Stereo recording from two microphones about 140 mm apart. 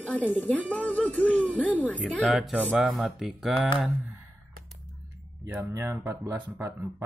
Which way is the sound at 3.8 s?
10° right (ahead or behind).